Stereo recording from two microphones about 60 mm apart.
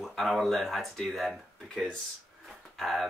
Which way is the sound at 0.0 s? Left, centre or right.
Centre.